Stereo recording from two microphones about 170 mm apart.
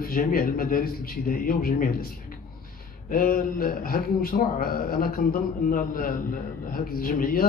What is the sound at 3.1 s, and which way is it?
A man's voice, 55° left (ahead or behind).